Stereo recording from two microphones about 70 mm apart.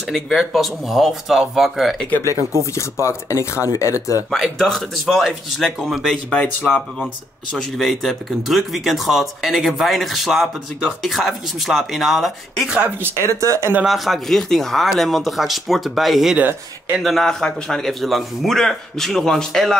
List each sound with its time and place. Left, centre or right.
0.1 s speech: centre
2.6 s speech: left
4.3 s speech: centre
12.7 s speech: right
13.2 s speech: right
13.8 s speech: centre
16.3 s speech: right
17.0 s speech: centre